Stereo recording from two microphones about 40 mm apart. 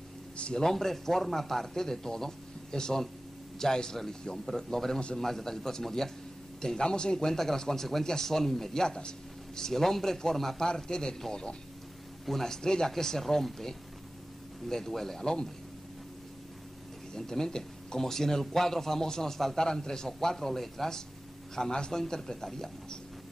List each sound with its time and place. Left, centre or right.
0.6 s a man's voice: centre
17.1 s a man's voice: centre